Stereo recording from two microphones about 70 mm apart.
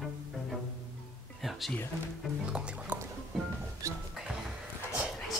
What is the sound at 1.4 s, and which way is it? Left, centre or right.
Speech, centre.